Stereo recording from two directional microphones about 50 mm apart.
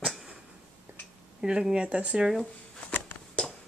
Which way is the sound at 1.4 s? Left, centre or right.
Centre.